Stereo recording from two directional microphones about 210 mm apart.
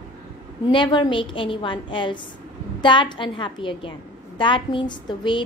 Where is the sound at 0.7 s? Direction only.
20° left (ahead or behind).